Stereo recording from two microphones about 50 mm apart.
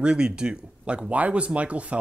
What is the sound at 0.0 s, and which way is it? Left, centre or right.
Speech, centre.